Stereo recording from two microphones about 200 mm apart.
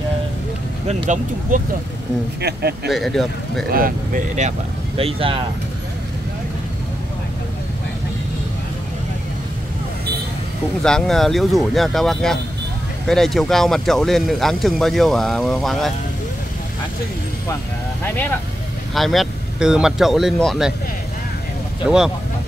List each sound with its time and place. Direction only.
0.8 s speech: 35° right (ahead or behind)
2.4 s speech: 55° right (ahead or behind)
2.9 s speech: centre (ahead or behind)
3.7 s speech: 45° right (ahead or behind); by 5.4 s 25° right (ahead or behind)
10.8 s speech: 5° left (ahead or behind)
18.0 s speech: 10° left (ahead or behind)
21.8 s speech: 5° right (ahead or behind)